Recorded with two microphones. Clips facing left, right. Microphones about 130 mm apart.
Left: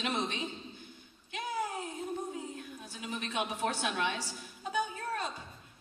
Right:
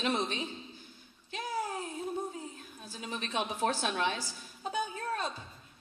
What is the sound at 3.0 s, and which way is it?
A woman's voice, 35° right (ahead or behind).